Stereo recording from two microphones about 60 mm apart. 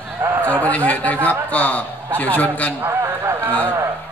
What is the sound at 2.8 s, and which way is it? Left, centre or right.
Speech, right.